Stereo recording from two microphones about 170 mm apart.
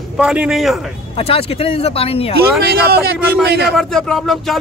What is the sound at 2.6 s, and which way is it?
A man's voice, 65° right (ahead or behind).